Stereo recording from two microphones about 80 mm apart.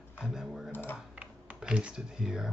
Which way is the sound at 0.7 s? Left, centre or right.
Left.